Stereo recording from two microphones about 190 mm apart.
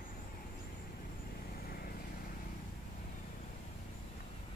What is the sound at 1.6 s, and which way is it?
Vehicle, 50° left (ahead or behind).